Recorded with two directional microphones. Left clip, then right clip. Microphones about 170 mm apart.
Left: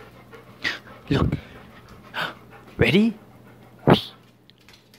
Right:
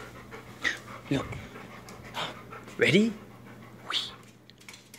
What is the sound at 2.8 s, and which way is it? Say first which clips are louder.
Speech: left 4 dB; 35° left (ahead or behind).